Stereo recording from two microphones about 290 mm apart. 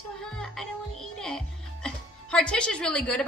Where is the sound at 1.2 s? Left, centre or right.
Centre.